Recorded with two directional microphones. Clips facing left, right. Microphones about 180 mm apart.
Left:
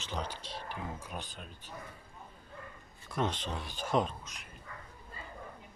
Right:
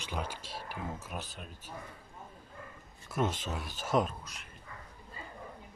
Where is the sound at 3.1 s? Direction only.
5° right (ahead or behind).